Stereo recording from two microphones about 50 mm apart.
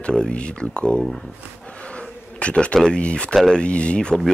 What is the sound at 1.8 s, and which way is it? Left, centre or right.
Bee, left.